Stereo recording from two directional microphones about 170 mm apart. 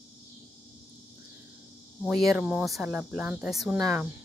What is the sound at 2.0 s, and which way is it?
Speech, 5° right (ahead or behind).